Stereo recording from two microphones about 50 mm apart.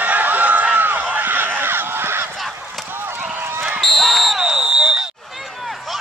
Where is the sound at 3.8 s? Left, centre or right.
Centre.